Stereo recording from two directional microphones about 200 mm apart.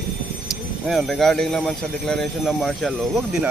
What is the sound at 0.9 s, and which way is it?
Speech, centre (ahead or behind).